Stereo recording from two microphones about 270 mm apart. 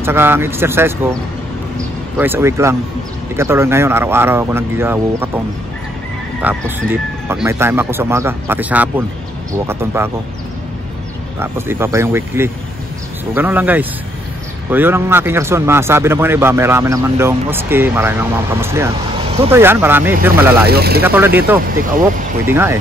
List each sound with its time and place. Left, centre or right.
0.0 s speech: centre
2.1 s speech: centre
6.4 s speech: centre
11.3 s speech: centre
20.6 s speech: right
21.0 s speech: centre
22.5 s speech: centre